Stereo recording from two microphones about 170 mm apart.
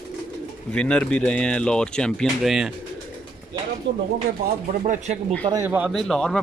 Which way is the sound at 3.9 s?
90° right.